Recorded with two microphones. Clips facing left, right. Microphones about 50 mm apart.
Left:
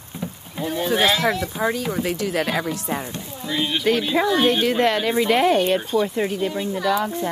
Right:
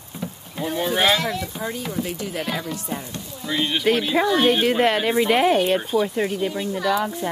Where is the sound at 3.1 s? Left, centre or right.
Left.